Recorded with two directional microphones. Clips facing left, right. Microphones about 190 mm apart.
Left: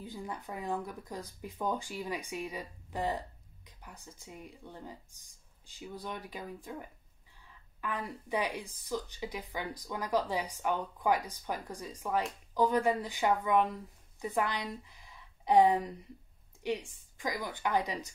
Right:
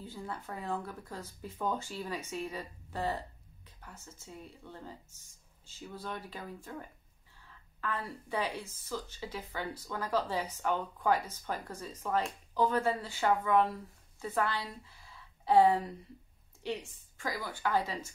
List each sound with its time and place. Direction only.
0.0 s a woman's voice: 15° left (ahead or behind)